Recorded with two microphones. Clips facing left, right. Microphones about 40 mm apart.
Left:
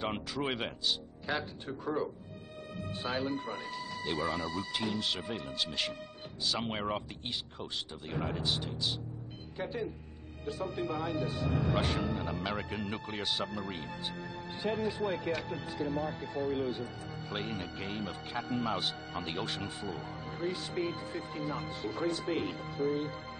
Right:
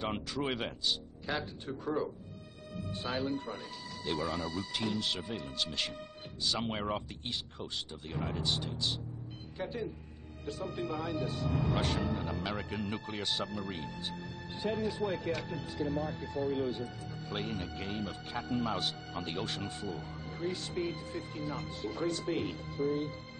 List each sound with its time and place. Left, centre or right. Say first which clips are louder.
0.0 s speech: even; centre
9.6 s speech: left 1 dB; centre
19.9 s music: left 1 dB; left
20.3 s speech: left 1 dB; centre